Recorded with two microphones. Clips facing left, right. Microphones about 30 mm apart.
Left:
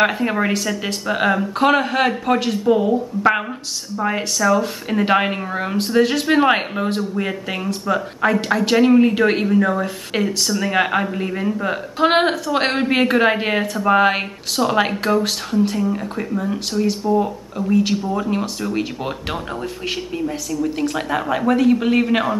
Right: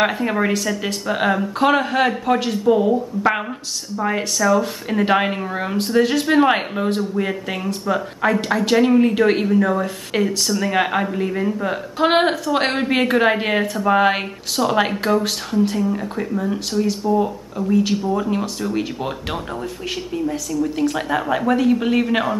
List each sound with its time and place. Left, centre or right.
0.0 s a woman's voice: centre